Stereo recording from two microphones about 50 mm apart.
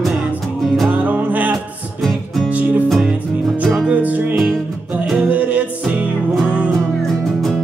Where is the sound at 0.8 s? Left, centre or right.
Right.